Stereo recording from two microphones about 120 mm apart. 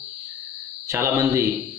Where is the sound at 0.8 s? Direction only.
25° right (ahead or behind).